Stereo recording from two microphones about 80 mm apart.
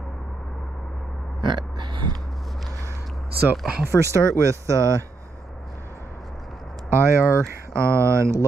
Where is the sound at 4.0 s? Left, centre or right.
Right.